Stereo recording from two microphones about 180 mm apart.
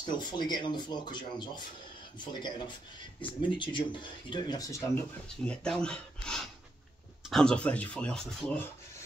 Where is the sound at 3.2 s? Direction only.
25° left (ahead or behind).